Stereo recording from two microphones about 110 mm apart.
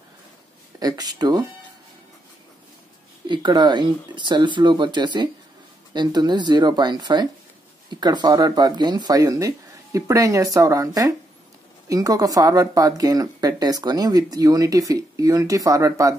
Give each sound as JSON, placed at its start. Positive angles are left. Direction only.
{"t": 0.7, "sound": "speech", "side_deg": -35}
{"t": 3.3, "sound": "speech", "side_deg": -40}